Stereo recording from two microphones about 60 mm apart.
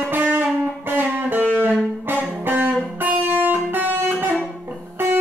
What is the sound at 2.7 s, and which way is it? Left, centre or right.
Music, right.